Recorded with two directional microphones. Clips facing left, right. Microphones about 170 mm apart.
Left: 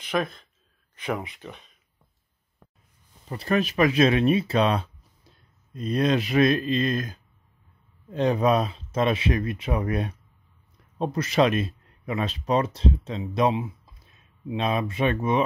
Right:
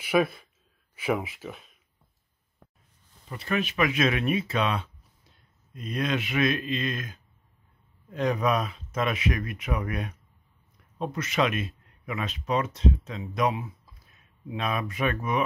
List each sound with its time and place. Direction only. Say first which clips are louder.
0.0 s speech: right 3 dB; 10° right (ahead or behind)
3.3 s speech: left 5 dB; 35° left (ahead or behind)